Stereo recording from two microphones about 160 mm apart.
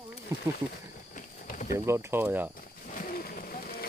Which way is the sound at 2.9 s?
60° left (ahead or behind).